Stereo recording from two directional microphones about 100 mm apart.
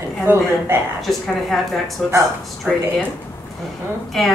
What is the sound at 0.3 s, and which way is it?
Speech, 20° right (ahead or behind).